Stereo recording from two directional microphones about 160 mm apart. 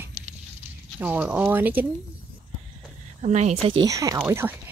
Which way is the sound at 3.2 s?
45° right (ahead or behind).